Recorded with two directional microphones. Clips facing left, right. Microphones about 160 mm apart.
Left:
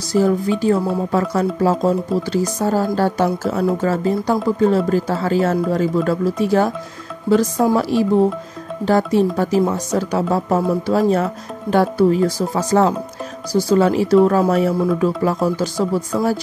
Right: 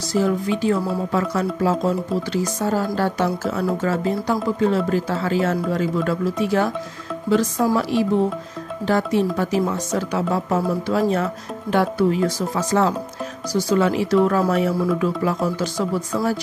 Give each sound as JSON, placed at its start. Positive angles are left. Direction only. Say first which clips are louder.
{"t": 0.1, "sound": "speech", "louder": "left 4 dB", "side_deg": 40}